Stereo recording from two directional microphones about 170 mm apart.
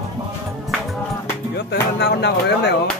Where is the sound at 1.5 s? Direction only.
75° left (ahead or behind).